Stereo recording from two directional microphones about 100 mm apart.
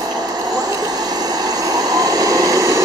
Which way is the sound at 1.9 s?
35° right (ahead or behind).